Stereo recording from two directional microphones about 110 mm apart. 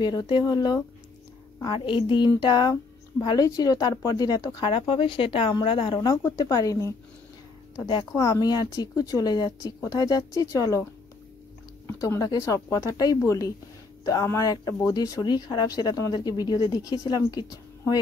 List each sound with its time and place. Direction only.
0.0 s a woman's voice: 40° left (ahead or behind)
4.6 s speech: 55° left (ahead or behind)
5.9 s a woman's voice: 30° left (ahead or behind)
8.1 s a woman's voice: 30° left (ahead or behind)
12.0 s a woman's voice: 30° left (ahead or behind)
15.2 s a woman's voice: 40° left (ahead or behind)